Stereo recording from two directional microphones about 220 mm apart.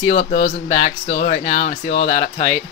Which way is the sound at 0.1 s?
45° left (ahead or behind).